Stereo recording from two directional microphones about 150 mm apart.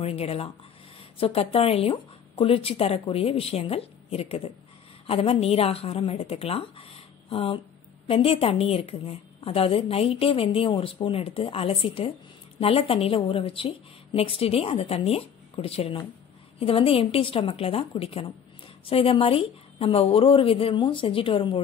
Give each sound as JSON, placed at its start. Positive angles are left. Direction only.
{"t": 0.0, "sound": "a woman's voice", "side_deg": 40}